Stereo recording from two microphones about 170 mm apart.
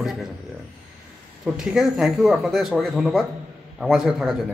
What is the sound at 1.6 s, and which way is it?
Speech, 5° right (ahead or behind).